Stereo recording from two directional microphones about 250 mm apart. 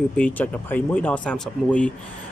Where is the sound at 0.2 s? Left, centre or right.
Centre.